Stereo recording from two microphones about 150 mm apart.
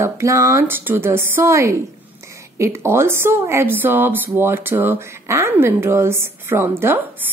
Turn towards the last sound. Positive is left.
turn(degrees=-15)  # may be behind; listen again after turning